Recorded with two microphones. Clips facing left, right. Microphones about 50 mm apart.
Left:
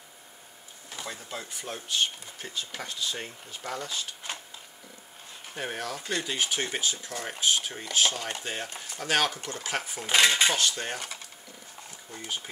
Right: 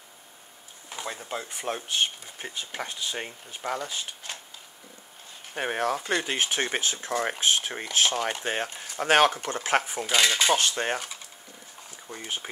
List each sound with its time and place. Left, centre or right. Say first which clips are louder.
0.8 s a sound: right 4 dB; right
1.5 s speech: right 2 dB; right
5.6 s speech: right 7 dB; right
10.0 s speech: left 1 dB; centre
10.6 s speech: right 3 dB; right
12.1 s speech: right 2 dB; right